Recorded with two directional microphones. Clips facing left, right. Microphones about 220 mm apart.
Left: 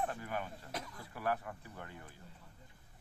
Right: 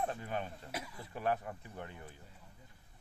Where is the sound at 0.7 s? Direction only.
10° right (ahead or behind).